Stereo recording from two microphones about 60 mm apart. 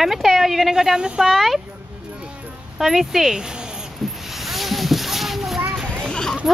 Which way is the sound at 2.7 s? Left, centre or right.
Centre.